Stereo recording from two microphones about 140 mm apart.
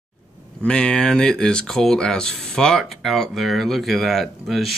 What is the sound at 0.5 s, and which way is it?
Speech, 5° left (ahead or behind).